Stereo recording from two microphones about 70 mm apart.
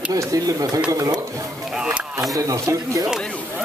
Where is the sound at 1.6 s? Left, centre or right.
Centre.